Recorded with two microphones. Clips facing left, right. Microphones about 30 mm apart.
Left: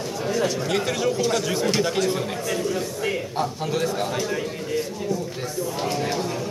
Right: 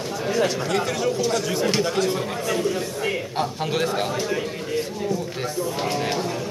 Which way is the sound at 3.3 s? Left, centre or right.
Right.